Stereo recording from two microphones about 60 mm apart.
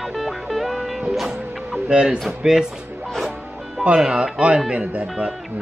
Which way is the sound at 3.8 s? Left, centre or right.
Centre.